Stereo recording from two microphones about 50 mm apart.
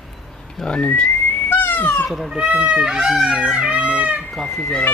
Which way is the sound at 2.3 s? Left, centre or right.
Right.